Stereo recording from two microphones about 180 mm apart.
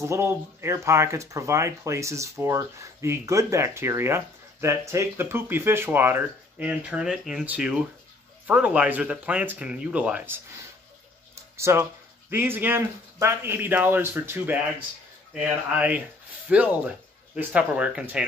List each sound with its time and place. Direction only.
0.0 s speech: 15° right (ahead or behind)